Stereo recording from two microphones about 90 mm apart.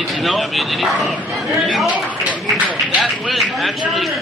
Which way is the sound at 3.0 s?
Centre (ahead or behind).